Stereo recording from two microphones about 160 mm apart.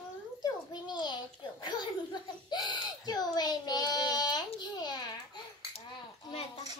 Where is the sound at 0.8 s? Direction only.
30° left (ahead or behind).